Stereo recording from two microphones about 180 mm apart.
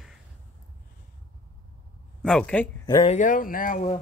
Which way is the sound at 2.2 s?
5° left (ahead or behind).